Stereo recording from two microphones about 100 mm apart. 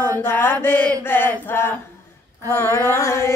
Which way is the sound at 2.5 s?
25° left (ahead or behind).